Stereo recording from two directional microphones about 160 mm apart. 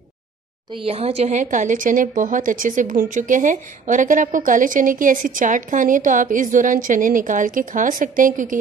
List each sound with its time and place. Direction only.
0.7 s speech: 40° right (ahead or behind); by 8.5 s 55° right (ahead or behind)